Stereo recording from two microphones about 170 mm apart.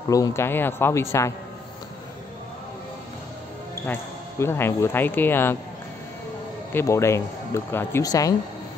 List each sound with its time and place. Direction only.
0.1 s speech: 20° left (ahead or behind)
3.8 s speech: 15° left (ahead or behind)
6.7 s speech: 15° left (ahead or behind)